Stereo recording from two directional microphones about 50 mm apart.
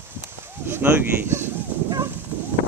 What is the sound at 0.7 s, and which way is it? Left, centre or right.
Speech, right.